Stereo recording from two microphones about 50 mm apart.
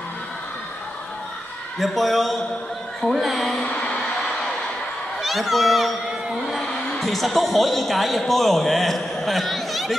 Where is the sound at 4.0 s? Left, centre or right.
Centre.